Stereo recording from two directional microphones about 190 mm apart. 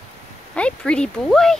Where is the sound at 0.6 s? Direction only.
5° left (ahead or behind).